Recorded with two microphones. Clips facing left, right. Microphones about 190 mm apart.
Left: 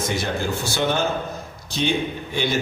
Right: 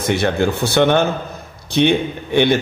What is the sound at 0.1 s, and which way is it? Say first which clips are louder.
A man's voice: right 7 dB; 65° right (ahead or behind).